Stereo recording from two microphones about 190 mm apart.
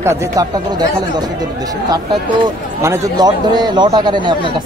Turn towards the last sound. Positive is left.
turn(degrees=-25)  # may be behind; listen again after turning